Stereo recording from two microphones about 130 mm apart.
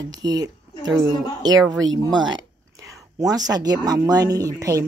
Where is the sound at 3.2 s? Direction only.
30° right (ahead or behind).